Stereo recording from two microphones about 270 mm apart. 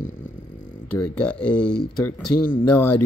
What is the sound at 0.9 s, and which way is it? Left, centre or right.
Speech, centre.